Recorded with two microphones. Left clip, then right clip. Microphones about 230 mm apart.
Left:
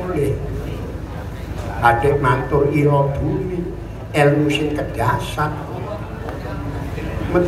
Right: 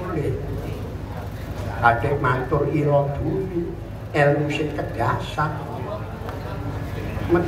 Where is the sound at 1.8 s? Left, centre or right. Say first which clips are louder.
Left 4 dB; left.